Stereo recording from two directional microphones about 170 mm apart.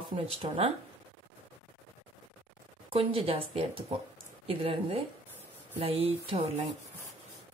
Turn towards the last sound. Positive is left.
turn(degrees=-35)  # may be behind; listen again after turning